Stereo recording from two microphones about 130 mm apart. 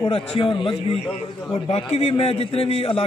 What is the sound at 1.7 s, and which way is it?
A man's voice, 50° left (ahead or behind).